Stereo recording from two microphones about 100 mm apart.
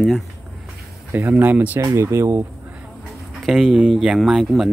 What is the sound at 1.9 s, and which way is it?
Speech, 30° right (ahead or behind).